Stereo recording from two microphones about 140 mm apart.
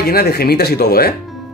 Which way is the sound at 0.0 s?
90° left.